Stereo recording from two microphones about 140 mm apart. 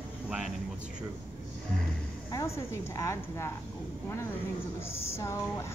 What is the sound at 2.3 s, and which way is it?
A woman's voice, 25° left (ahead or behind).